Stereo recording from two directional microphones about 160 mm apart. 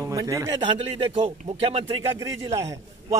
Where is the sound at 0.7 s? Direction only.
35° right (ahead or behind).